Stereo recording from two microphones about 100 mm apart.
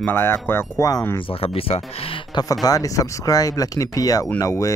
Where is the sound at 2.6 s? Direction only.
35° left (ahead or behind).